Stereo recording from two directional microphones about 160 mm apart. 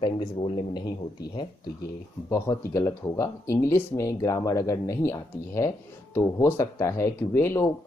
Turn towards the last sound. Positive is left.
turn(degrees=15)  # may be behind; listen again after turning